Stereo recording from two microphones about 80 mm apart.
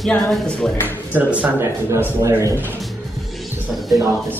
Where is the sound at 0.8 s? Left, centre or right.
Right.